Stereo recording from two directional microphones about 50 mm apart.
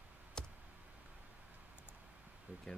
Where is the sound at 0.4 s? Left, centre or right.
Centre.